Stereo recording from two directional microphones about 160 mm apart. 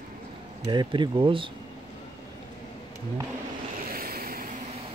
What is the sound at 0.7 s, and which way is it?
Speech, 30° right (ahead or behind).